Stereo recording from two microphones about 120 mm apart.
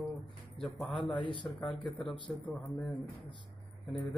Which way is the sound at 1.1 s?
40° left (ahead or behind).